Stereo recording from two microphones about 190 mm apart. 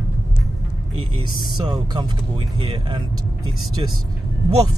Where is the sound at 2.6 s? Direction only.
25° right (ahead or behind).